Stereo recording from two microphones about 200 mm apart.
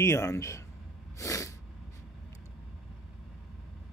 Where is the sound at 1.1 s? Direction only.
15° left (ahead or behind).